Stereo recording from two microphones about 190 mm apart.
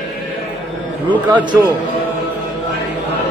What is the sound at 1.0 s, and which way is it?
Speech, 25° right (ahead or behind).